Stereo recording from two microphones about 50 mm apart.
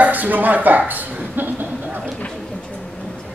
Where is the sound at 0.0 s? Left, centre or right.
Right.